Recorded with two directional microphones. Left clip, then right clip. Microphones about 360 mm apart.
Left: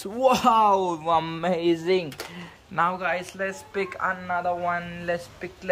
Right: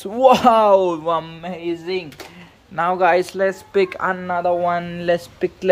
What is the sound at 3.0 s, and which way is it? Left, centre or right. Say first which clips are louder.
Speech: right 11 dB; centre.